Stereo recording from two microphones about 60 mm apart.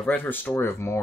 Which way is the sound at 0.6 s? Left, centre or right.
Left.